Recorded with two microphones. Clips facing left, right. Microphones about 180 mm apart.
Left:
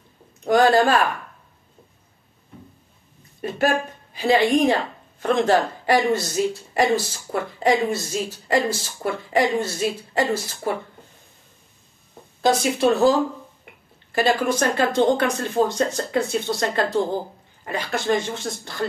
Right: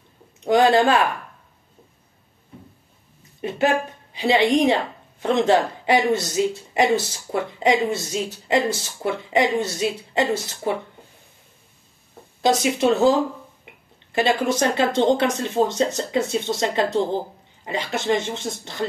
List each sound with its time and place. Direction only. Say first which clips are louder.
0.4 s speech: even; 20° right (ahead or behind)
3.3 s a woman's voice: right 1 dB; 20° right (ahead or behind)
12.4 s speech: even; 20° right (ahead or behind)
14.1 s speech: even; 20° right (ahead or behind)